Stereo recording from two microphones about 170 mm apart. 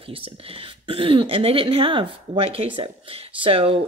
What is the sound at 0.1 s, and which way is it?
Speech, 35° right (ahead or behind).